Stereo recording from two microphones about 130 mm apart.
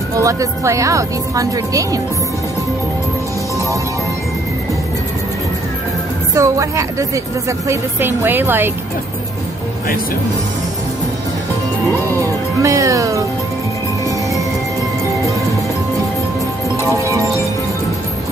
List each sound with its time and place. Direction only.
0.2 s a woman's voice: 25° right (ahead or behind)
6.3 s a woman's voice: 25° right (ahead or behind)
12.2 s a woman's voice: 25° right (ahead or behind)
16.9 s music: 25° right (ahead or behind)